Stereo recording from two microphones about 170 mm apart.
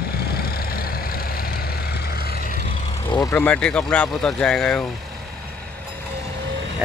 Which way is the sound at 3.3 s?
10° left (ahead or behind).